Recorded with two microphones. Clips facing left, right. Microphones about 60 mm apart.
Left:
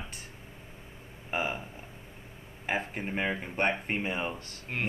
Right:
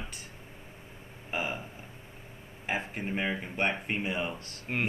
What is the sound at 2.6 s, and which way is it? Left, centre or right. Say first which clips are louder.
Speech: left 1 dB; left.